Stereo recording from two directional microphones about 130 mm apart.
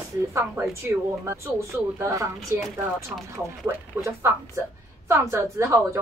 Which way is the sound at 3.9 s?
15° right (ahead or behind).